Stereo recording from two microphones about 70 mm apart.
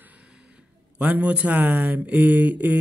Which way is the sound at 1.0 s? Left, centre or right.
Centre.